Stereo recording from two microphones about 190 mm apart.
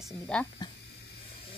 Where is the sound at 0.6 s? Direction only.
20° left (ahead or behind).